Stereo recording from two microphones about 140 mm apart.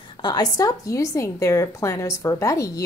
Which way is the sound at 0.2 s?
30° left (ahead or behind).